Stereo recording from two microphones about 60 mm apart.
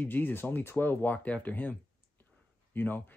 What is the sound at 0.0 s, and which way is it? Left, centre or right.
Speech, left.